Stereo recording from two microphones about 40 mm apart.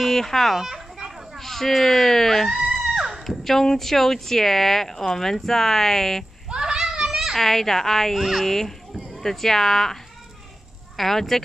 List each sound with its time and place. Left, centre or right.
0.0 s a child's voice: centre
0.6 s children playing: centre
1.4 s speech: centre
2.5 s a sound: centre
3.3 s speech: centre
6.5 s children playing: centre
7.3 s speech: centre
8.2 s a child's voice: centre
8.5 s speech: centre
11.0 s speech: centre